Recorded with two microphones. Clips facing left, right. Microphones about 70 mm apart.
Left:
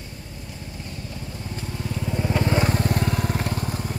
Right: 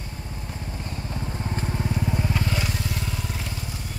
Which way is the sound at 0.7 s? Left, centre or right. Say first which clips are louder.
Right 3 dB; right.